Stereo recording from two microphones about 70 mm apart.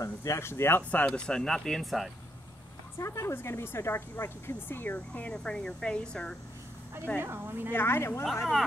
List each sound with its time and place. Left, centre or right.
0.0 s a woman's voice: left
1.0 s speech: centre
3.0 s a woman's voice: left
5.3 s speech: centre
7.2 s a woman's voice: right
7.7 s a woman's voice: left